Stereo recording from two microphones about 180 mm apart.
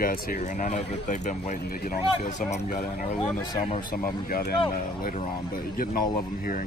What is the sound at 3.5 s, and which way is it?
Speech, 30° left (ahead or behind).